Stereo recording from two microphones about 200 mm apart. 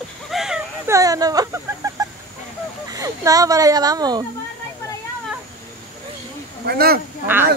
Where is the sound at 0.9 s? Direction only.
15° right (ahead or behind).